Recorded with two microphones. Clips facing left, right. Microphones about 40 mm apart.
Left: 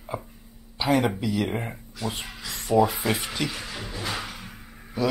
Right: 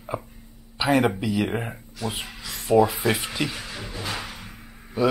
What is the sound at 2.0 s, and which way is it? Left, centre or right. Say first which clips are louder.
Speech: right 1 dB; centre.